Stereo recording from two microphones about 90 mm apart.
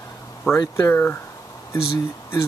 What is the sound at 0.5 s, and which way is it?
Speech, 30° left (ahead or behind).